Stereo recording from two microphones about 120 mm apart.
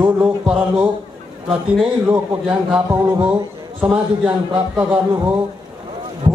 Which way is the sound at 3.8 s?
15° right (ahead or behind).